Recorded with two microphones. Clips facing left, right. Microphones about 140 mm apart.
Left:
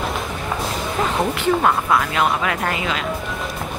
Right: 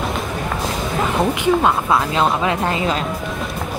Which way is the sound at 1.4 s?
20° right (ahead or behind).